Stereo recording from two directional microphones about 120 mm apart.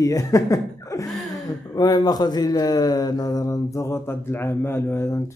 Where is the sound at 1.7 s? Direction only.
30° left (ahead or behind).